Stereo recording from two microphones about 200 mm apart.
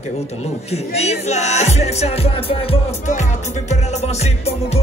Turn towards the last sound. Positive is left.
turn(degrees=30)  # may be behind; listen again after turning